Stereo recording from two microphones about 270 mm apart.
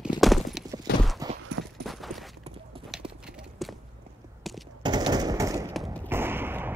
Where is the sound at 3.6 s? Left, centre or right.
Centre.